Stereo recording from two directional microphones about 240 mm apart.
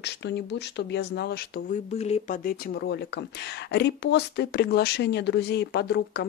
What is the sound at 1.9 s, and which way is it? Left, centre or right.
Speech, left.